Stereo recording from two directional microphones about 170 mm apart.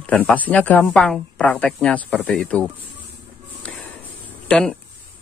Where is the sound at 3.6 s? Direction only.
10° left (ahead or behind).